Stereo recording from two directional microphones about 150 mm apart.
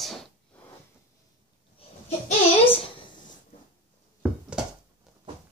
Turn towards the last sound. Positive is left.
turn(degrees=-5)  # may be behind; listen again after turning